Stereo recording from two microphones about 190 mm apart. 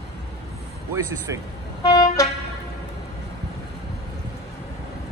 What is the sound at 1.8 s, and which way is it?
Vehicle, 20° left (ahead or behind).